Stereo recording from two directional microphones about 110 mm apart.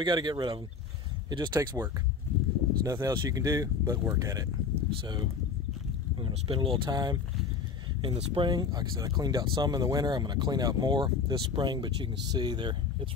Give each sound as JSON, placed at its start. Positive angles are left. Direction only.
{"t": 0.0, "sound": "speech", "side_deg": -45}